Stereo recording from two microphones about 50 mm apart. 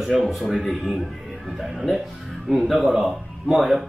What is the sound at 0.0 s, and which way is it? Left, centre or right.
Speech, centre.